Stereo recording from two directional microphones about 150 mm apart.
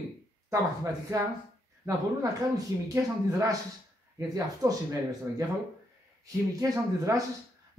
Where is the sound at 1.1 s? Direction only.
20° right (ahead or behind).